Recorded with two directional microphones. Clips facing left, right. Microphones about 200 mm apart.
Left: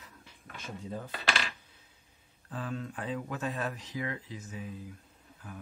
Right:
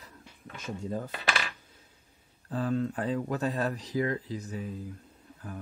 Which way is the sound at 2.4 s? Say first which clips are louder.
Right 8 dB; 35° right (ahead or behind).